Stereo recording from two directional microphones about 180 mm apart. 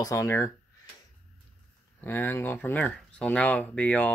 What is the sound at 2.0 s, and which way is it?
Speech, 10° left (ahead or behind).